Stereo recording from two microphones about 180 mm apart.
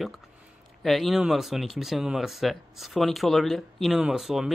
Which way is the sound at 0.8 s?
Centre (ahead or behind).